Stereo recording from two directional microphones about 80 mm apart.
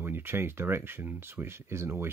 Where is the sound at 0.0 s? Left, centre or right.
Right.